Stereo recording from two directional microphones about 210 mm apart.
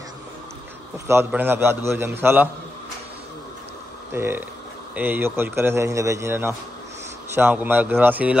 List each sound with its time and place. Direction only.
0.9 s a man's voice: 10° right (ahead or behind)
4.1 s a man's voice: 10° right (ahead or behind)